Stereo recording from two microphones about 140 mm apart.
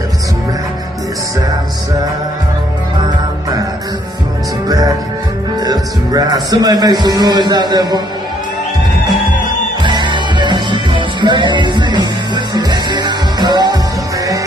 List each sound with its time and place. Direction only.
4.6 s music: 25° right (ahead or behind)
5.6 s speech: 30° right (ahead or behind)
9.8 s music: 35° right (ahead or behind)